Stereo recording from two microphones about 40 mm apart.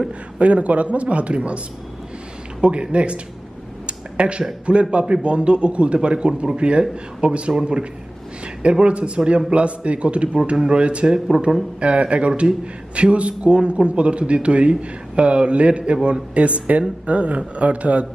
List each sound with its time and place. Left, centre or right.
0.4 s a man's voice: right
2.6 s speech: right
3.8 s a sound: right
4.6 s a man's voice: right